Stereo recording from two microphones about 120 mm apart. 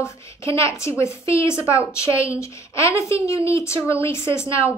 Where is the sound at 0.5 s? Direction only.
25° left (ahead or behind).